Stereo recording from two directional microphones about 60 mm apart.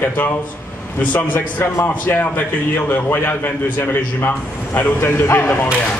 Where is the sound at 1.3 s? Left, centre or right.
Left.